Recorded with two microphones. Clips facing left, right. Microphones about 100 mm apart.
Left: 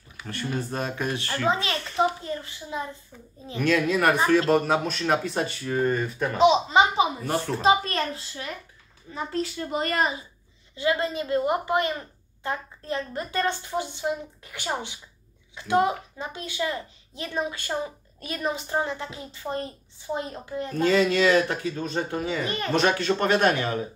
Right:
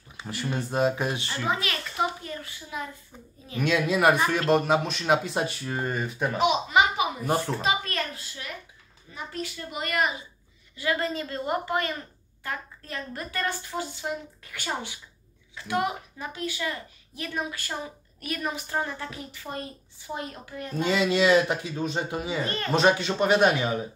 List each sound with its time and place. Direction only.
0.2 s speech: 20° right (ahead or behind)
1.5 s a woman's voice: 25° left (ahead or behind)
3.6 s speech: 10° right (ahead or behind)
6.3 s a woman's voice: 25° left (ahead or behind)
10.8 s a woman's voice: 20° left (ahead or behind)
20.7 s speech: 15° right (ahead or behind)